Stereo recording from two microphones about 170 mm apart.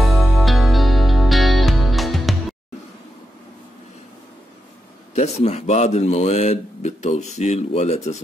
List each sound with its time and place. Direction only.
0.0 s music: centre (ahead or behind)
5.1 s speech: 40° left (ahead or behind)